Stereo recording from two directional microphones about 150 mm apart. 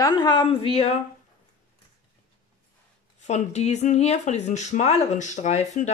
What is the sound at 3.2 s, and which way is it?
Speech, 50° left (ahead or behind).